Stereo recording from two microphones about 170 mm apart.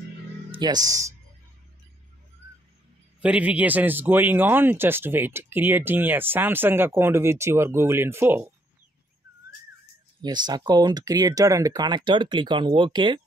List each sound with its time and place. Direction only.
0.5 s speech: 25° right (ahead or behind)
3.2 s a man's voice: 10° right (ahead or behind)
10.2 s speech: 25° right (ahead or behind)